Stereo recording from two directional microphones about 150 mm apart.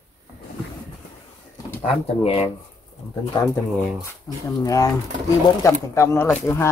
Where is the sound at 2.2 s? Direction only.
40° left (ahead or behind).